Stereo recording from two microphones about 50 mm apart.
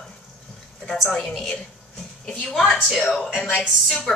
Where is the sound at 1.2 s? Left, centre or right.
Centre.